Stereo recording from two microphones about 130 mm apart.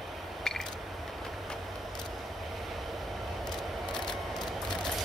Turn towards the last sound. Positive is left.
turn(degrees=5)  # may be behind; listen again after turning